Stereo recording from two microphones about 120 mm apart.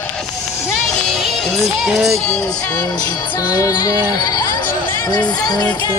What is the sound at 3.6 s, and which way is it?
Speech, 30° left (ahead or behind).